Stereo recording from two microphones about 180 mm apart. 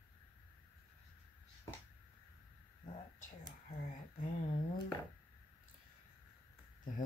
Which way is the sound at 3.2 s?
50° left (ahead or behind).